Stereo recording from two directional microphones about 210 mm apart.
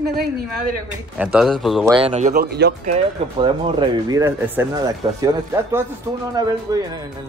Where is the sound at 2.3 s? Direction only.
50° right (ahead or behind).